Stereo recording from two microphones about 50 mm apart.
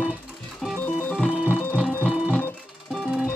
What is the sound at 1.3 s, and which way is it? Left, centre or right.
Music, right.